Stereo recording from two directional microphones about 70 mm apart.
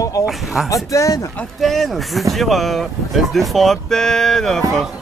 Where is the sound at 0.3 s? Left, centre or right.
Centre.